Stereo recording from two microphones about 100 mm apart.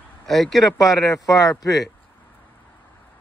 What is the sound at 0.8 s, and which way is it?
Speech, 35° left (ahead or behind).